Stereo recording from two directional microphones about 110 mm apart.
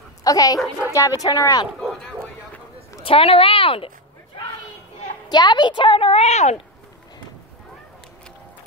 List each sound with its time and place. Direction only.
0.2 s speech: 35° left (ahead or behind)
3.0 s a woman's voice: 55° left (ahead or behind)
5.3 s a woman's voice: 40° left (ahead or behind); by 6.6 s 80° left